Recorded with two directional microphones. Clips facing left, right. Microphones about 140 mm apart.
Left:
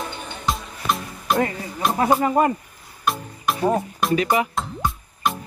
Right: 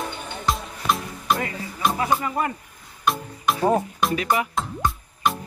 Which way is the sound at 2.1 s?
35° left (ahead or behind).